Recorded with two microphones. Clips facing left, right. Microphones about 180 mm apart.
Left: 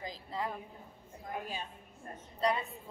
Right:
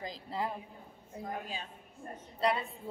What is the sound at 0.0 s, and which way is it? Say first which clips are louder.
Speech: right 2 dB; 35° right (ahead or behind).